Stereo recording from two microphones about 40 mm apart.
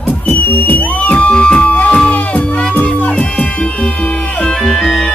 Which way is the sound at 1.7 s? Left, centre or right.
Left.